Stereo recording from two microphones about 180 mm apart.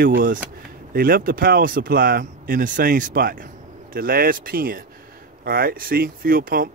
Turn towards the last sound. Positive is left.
turn(degrees=-55)  # may be behind; listen again after turning